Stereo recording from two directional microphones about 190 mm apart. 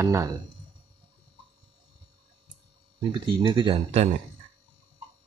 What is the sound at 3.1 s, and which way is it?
Speech, 25° right (ahead or behind).